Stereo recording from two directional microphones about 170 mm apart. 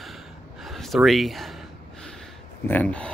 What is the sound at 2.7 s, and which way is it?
Speech, 10° left (ahead or behind).